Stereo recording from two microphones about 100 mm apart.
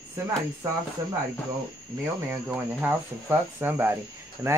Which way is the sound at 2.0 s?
15° right (ahead or behind).